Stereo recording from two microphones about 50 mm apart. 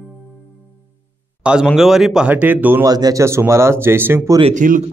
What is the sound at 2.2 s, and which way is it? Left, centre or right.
Speech, right.